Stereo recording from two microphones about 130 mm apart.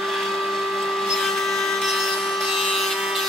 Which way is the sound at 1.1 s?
Centre (ahead or behind).